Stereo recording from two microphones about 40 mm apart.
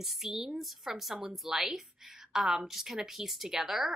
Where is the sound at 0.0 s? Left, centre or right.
Centre.